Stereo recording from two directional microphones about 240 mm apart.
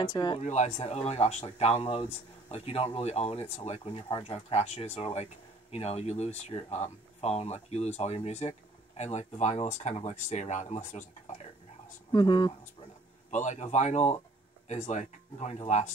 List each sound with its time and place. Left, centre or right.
0.0 s speech: centre
0.4 s speech: left
12.1 s speech: centre
13.3 s speech: left